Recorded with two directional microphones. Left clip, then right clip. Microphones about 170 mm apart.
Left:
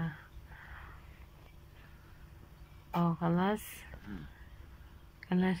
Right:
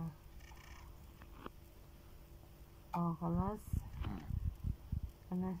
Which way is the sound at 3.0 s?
20° left (ahead or behind).